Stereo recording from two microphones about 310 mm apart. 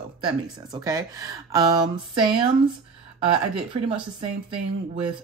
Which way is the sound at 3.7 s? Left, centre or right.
Centre.